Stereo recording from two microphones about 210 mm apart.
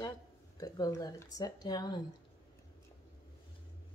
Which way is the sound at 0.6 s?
15° left (ahead or behind).